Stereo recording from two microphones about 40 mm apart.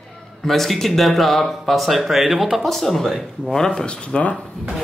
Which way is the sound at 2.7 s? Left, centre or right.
Centre.